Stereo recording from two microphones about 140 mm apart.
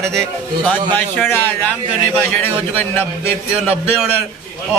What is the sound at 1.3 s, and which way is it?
Speech, 15° left (ahead or behind).